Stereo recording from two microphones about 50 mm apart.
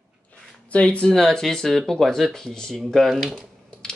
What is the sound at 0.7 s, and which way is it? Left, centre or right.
Speech, left.